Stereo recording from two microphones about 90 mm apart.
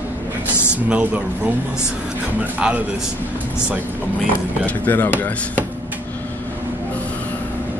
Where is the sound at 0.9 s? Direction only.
15° right (ahead or behind).